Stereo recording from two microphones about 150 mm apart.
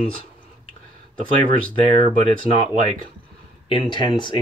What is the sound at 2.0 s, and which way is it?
Speech, 55° right (ahead or behind).